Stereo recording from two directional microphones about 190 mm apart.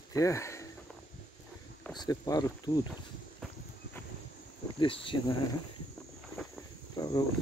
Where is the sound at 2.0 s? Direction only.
20° left (ahead or behind).